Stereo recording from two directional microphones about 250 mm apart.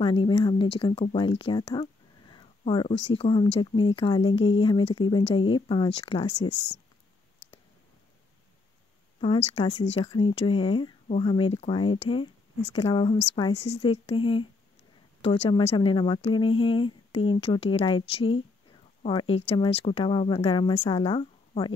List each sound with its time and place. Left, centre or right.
0.0 s speech: centre
9.6 s speech: centre